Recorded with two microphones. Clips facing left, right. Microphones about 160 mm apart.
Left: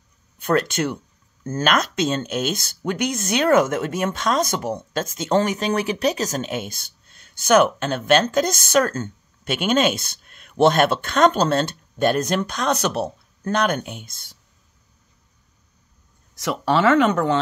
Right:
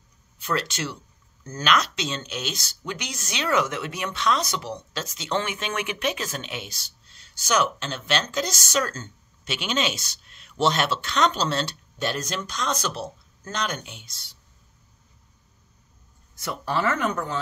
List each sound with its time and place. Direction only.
0.4 s speech: 55° left (ahead or behind)
16.3 s speech: 90° left